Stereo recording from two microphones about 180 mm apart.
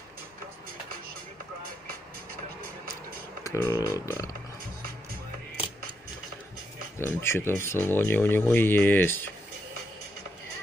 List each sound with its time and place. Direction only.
3.4 s speech: 20° left (ahead or behind)
7.0 s speech: 15° left (ahead or behind)